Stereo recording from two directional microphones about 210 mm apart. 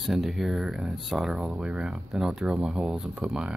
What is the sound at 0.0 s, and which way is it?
Speech, centre (ahead or behind).